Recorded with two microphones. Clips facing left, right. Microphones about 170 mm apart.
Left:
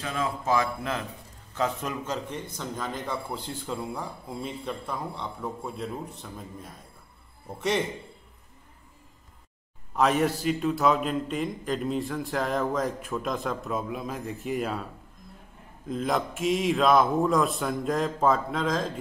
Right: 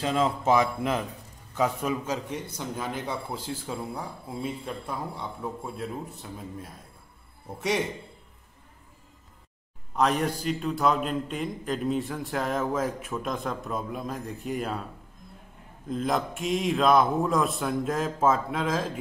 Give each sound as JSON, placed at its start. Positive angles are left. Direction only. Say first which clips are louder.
{"t": 0.0, "sound": "speech", "louder": "right 5 dB", "side_deg": -25}
{"t": 0.6, "sound": "a man's voice", "louder": "right 3 dB", "side_deg": -15}
{"t": 9.9, "sound": "a man's voice", "louder": "left 2 dB", "side_deg": 0}
{"t": 15.9, "sound": "a man's voice", "louder": "even", "side_deg": 0}